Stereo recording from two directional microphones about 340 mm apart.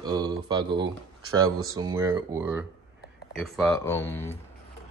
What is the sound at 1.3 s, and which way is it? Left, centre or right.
Speech, right.